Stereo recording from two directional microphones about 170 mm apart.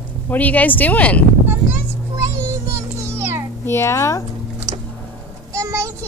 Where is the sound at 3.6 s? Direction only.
15° left (ahead or behind).